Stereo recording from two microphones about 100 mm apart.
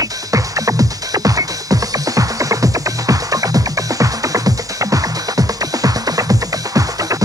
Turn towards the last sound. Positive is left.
turn(degrees=-35)  # may be behind; listen again after turning